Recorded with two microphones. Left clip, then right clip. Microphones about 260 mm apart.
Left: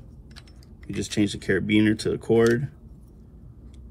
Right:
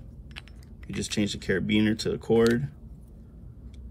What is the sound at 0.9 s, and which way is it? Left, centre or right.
Speech, centre.